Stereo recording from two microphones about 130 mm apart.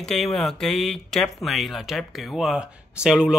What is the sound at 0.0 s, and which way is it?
Speech, centre (ahead or behind).